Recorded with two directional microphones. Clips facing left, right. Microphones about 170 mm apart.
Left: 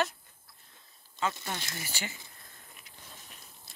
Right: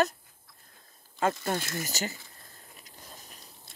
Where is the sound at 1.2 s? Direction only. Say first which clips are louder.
Right 6 dB; 45° right (ahead or behind).